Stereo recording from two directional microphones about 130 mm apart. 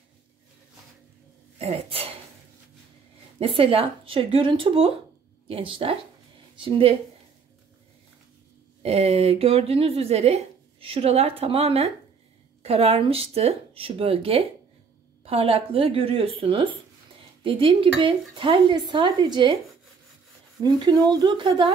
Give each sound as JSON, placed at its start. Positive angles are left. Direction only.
{"t": 1.6, "sound": "speech", "side_deg": -50}
{"t": 3.3, "sound": "speech", "side_deg": -45}
{"t": 8.8, "sound": "speech", "side_deg": -50}
{"t": 20.6, "sound": "speech", "side_deg": -30}